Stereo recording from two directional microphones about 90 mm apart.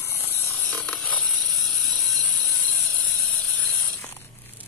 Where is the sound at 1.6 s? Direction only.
Centre (ahead or behind).